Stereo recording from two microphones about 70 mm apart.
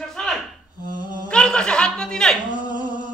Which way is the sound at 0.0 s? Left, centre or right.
Centre.